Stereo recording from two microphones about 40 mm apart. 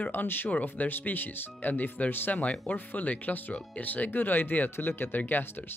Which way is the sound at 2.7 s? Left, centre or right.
Left.